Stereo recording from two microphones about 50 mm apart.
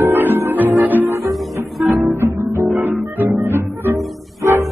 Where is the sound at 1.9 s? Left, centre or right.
Right.